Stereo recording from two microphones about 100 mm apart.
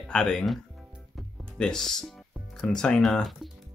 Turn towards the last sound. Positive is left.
turn(degrees=0)  # may be behind; listen again after turning